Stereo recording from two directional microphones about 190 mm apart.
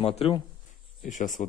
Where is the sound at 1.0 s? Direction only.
40° left (ahead or behind).